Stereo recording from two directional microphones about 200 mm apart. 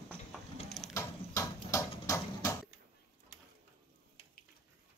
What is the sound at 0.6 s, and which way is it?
Ratchet, centre (ahead or behind).